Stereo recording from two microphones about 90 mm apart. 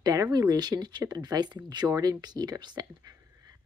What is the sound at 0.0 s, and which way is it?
Speech, 45° right (ahead or behind).